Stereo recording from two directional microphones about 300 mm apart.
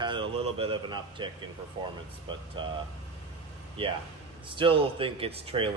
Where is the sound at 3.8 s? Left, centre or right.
Centre.